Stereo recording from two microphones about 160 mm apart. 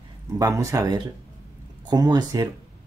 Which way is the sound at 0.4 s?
20° right (ahead or behind).